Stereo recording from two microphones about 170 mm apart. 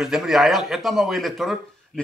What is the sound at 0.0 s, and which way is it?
A man's voice, centre (ahead or behind).